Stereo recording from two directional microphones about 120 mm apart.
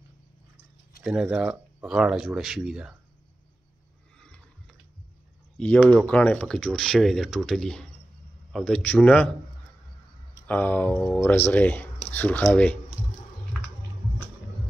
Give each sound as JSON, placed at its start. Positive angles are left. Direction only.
{"t": 1.0, "sound": "speech", "side_deg": -5}
{"t": 5.6, "sound": "speech", "side_deg": 10}
{"t": 10.4, "sound": "speech", "side_deg": 15}